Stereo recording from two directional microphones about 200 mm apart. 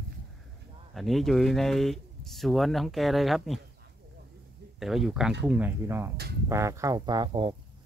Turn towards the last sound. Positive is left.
turn(degrees=-25)  # may be behind; listen again after turning